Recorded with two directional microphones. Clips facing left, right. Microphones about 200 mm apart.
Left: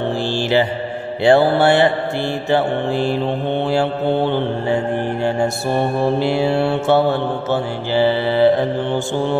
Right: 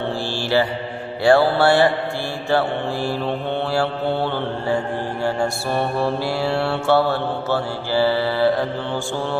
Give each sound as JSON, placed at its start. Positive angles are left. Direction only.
{"t": 0.4, "sound": "mantra", "side_deg": 20}